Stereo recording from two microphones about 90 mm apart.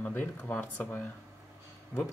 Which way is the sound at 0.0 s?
20° left (ahead or behind).